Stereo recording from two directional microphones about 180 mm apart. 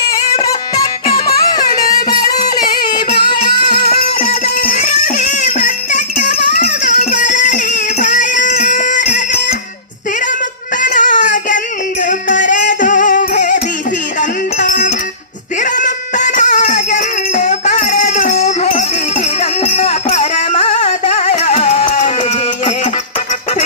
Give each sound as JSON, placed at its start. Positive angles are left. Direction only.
{"t": 0.4, "sound": "music", "side_deg": 30}
{"t": 4.6, "sound": "music", "side_deg": 50}
{"t": 10.8, "sound": "a sound", "side_deg": 45}
{"t": 12.1, "sound": "music", "side_deg": 45}
{"t": 14.6, "sound": "music", "side_deg": 45}